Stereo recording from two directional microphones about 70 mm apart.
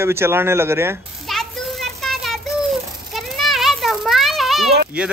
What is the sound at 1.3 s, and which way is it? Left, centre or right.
Music, centre.